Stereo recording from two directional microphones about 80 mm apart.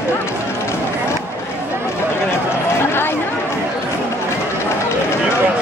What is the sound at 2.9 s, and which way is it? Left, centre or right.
Run, left.